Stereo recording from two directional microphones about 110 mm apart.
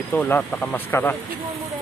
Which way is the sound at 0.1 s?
15° left (ahead or behind).